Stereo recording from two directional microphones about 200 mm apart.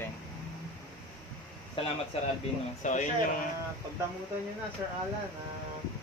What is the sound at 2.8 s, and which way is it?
Speech, 40° left (ahead or behind).